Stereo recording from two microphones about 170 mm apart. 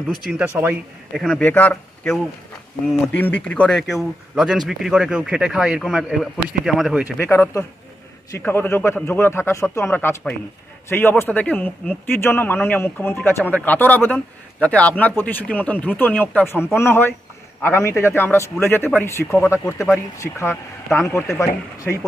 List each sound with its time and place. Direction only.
0.2 s speech: 5° right (ahead or behind)
1.1 s speech: 5° left (ahead or behind)
3.2 s speech: 10° left (ahead or behind); by 7.2 s 5° right (ahead or behind)
7.2 s speech: 15° left (ahead or behind)